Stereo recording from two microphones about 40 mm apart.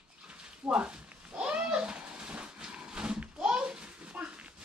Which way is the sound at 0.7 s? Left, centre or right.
Right.